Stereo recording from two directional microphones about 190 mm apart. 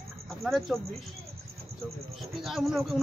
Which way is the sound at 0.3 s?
Centre (ahead or behind).